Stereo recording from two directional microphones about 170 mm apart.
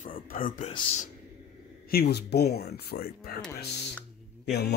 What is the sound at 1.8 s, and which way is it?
Speech, 70° left (ahead or behind).